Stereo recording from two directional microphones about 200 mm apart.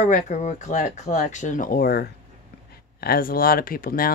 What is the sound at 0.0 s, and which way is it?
Speech, 35° left (ahead or behind).